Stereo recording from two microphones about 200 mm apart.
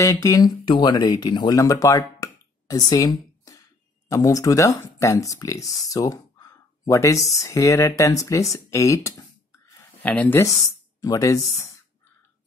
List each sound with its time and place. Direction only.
0.0 s speech: 15° left (ahead or behind)